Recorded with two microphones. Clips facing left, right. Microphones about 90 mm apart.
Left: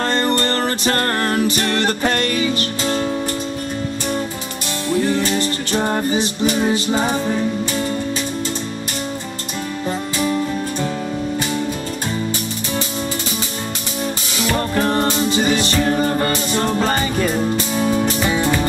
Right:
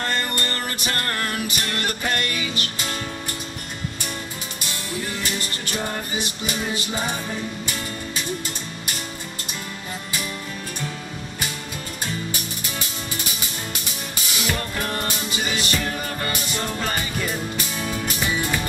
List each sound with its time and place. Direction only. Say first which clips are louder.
0.0 s music: left 8 dB; 30° left (ahead or behind)
5.0 s music: left 10 dB; 30° left (ahead or behind)
14.5 s music: left 10 dB; 35° left (ahead or behind)